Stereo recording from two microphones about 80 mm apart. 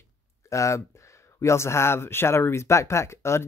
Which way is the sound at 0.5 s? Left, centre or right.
Left.